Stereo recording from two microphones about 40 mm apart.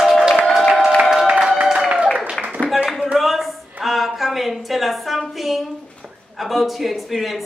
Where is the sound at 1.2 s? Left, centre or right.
Right.